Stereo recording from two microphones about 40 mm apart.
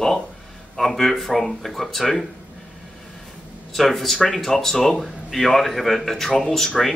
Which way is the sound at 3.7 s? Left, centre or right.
Centre.